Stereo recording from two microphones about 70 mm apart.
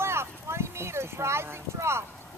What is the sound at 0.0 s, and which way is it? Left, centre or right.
Speech, right.